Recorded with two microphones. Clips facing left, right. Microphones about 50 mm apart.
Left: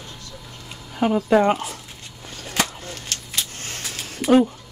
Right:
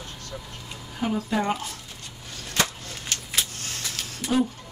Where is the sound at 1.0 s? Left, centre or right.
Left.